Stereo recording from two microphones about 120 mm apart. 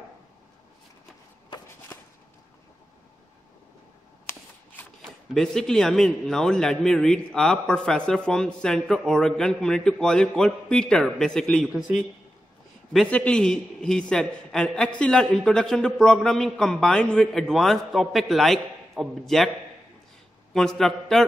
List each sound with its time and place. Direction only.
4.3 s shuffling cards: 20° left (ahead or behind)
5.0 s a man's voice: 5° left (ahead or behind)
12.9 s a man's voice: 5° left (ahead or behind)
20.5 s a man's voice: 5° left (ahead or behind)